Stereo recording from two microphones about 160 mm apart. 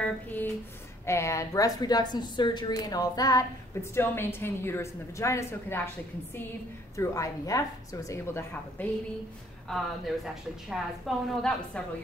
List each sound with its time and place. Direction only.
0.0 s a sound: 10° left (ahead or behind)
1.0 s a woman's voice: 15° left (ahead or behind)
7.0 s a woman's voice: 20° left (ahead or behind)
9.7 s a woman's voice: centre (ahead or behind)